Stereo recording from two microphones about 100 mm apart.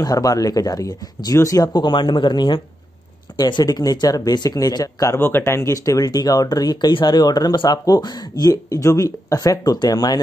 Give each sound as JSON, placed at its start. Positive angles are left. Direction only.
{"t": 0.0, "sound": "speech", "side_deg": 35}
{"t": 1.7, "sound": "speech", "side_deg": 50}
{"t": 5.1, "sound": "speech", "side_deg": 25}